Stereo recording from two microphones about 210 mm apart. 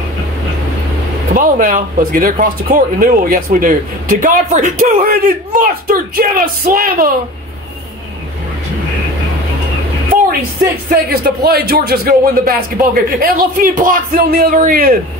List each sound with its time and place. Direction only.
1.3 s speech: 40° right (ahead or behind)
10.9 s speech: 50° right (ahead or behind)